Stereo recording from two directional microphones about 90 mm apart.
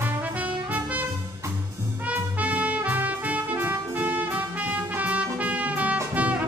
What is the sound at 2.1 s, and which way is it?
Music, 15° right (ahead or behind).